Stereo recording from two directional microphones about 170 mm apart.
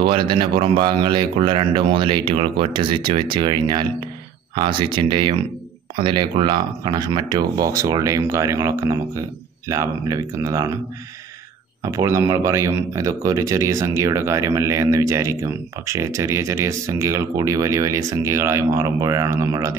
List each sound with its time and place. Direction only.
0.0 s speech: 30° right (ahead or behind)
11.8 s speech: 20° right (ahead or behind)